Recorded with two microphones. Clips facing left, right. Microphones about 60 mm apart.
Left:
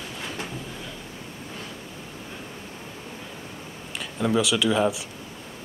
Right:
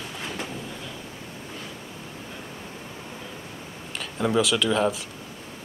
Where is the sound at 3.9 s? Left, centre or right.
Centre.